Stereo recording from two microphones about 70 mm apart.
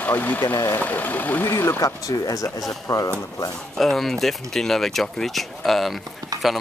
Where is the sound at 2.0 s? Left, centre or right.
Left.